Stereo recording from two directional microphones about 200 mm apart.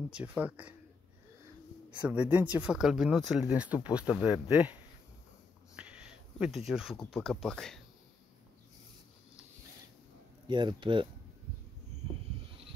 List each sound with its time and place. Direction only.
0.1 s speech: 5° right (ahead or behind)
1.9 s speech: 5° right (ahead or behind)
5.8 s speech: 5° right (ahead or behind)
10.5 s speech: 25° right (ahead or behind)